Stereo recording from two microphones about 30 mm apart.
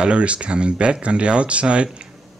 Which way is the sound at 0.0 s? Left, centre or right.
Right.